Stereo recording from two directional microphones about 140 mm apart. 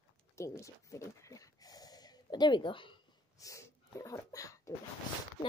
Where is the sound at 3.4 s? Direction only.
25° left (ahead or behind).